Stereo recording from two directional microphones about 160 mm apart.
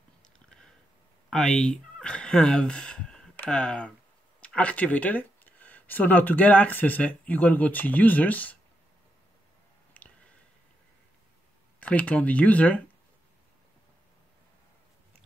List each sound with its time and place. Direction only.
1.3 s speech: 5° left (ahead or behind)
9.9 s a sound: 10° left (ahead or behind)
11.8 s speech: 10° left (ahead or behind)